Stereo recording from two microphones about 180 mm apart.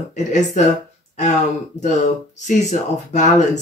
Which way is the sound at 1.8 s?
40° left (ahead or behind).